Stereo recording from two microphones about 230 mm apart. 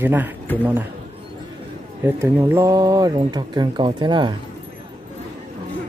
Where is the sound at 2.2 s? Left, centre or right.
Centre.